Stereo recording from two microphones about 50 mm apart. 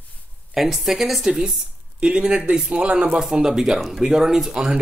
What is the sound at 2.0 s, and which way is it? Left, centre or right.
Speech, right.